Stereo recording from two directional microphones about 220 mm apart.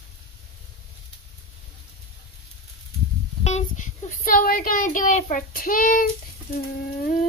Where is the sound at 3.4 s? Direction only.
35° left (ahead or behind).